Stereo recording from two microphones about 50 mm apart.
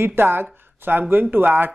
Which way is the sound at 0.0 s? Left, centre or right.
Right.